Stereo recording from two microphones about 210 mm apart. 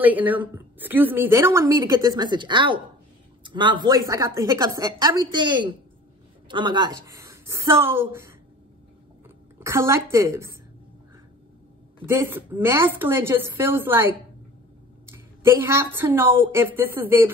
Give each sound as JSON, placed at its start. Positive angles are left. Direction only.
{"t": 0.0, "sound": "a woman's voice", "side_deg": -10}
{"t": 9.6, "sound": "a woman's voice", "side_deg": -10}
{"t": 12.1, "sound": "a woman's voice", "side_deg": -10}